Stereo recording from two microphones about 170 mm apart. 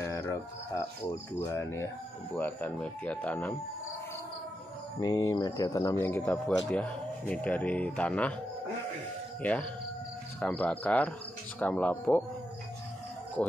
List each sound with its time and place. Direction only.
0.0 s a sound: 15° left (ahead or behind)
1.4 s speech: 15° left (ahead or behind)
5.0 s speech: 20° left (ahead or behind)
9.4 s speech: 10° left (ahead or behind)